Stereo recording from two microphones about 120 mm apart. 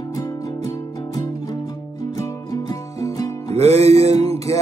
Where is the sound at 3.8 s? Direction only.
25° left (ahead or behind).